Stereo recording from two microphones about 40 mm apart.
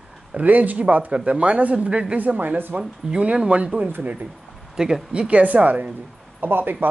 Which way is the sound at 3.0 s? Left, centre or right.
Right.